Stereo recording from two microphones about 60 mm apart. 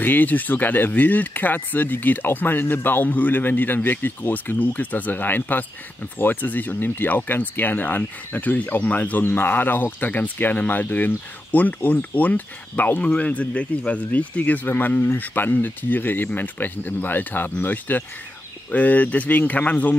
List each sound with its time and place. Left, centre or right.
0.0 s speech: left